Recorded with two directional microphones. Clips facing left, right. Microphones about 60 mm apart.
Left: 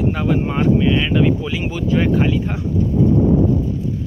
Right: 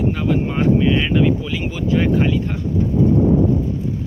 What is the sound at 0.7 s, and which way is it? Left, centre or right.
Speech, centre.